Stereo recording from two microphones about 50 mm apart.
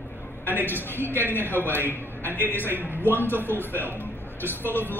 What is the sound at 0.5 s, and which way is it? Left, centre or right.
A woman's voice, left.